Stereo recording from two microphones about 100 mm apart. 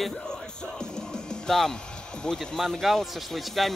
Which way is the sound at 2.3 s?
Centre (ahead or behind).